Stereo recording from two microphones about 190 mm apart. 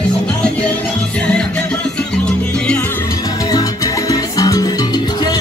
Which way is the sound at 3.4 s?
20° left (ahead or behind).